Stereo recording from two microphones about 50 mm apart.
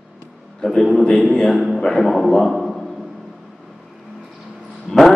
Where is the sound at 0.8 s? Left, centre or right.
Centre.